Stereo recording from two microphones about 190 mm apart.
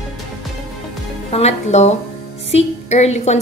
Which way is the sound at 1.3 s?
35° left (ahead or behind).